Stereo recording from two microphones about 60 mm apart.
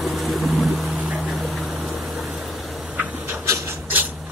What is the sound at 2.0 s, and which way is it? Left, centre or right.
Vehicle, centre.